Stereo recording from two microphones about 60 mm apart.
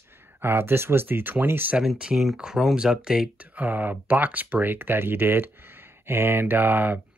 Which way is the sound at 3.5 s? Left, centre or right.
Right.